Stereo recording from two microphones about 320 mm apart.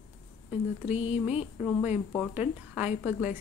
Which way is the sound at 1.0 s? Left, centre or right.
Centre.